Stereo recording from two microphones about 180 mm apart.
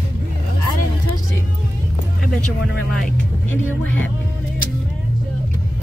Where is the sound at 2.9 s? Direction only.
Centre (ahead or behind).